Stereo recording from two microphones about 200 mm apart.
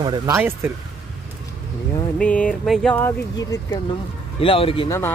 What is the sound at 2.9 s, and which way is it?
Speech, 15° left (ahead or behind).